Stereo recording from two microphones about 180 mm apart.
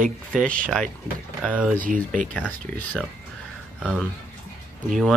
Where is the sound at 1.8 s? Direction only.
50° right (ahead or behind).